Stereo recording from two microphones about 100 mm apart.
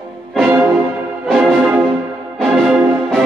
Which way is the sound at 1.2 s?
Centre (ahead or behind).